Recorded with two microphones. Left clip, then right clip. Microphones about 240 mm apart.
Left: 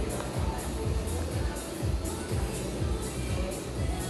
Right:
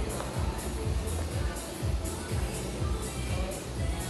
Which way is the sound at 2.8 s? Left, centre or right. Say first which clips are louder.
Left 2 dB; right.